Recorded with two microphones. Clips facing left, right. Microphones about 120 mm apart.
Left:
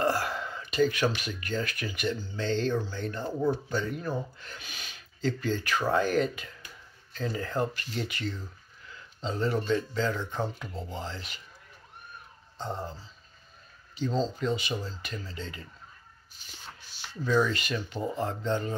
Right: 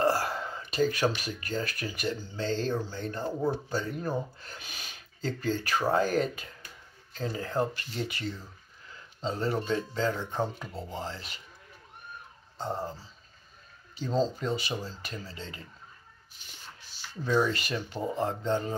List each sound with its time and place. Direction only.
0.0 s speech: 35° right (ahead or behind)
14.4 s speech: 40° right (ahead or behind)
16.9 s a sound: 65° left (ahead or behind)
17.2 s speech: 30° right (ahead or behind)